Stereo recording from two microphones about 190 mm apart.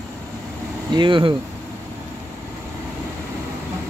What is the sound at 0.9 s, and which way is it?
Speech, 25° right (ahead or behind).